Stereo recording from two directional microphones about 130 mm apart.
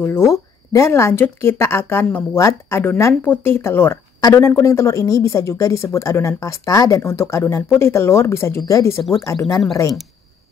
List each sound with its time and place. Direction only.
0.0 s speech: 20° left (ahead or behind)